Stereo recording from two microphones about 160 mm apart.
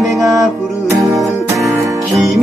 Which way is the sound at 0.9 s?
20° right (ahead or behind).